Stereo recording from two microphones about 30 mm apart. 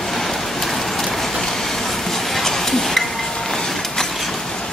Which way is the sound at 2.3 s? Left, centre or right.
Centre.